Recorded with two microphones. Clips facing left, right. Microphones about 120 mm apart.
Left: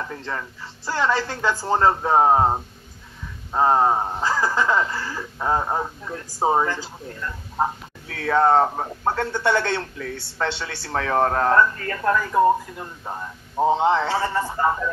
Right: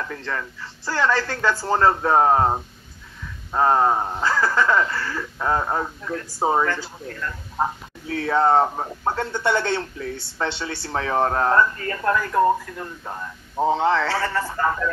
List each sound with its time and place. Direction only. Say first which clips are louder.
0.0 s speech: right 1 dB; 25° left (ahead or behind)
3.5 s speech: even; 15° left (ahead or behind)
8.3 s speech: left 1 dB; 15° right (ahead or behind)
9.1 s speech: left 1 dB; 20° right (ahead or behind)
11.6 s speech: left 1 dB; 5° right (ahead or behind)
12.3 s speech: left 2 dB; 10° left (ahead or behind)